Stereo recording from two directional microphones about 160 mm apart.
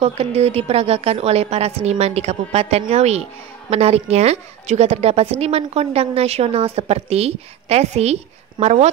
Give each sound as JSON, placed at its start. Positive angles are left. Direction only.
{"t": 0.0, "sound": "a woman's voice", "side_deg": -40}